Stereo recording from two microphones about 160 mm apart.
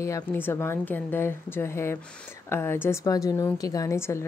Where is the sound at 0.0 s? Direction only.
15° left (ahead or behind).